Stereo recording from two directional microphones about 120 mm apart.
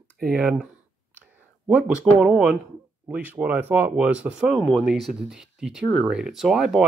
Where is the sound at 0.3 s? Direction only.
5° right (ahead or behind).